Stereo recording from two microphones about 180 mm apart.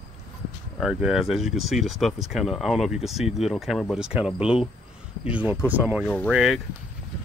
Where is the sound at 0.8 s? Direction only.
Centre (ahead or behind).